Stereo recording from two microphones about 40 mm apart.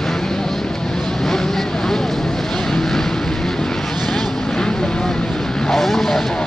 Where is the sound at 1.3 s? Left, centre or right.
Centre.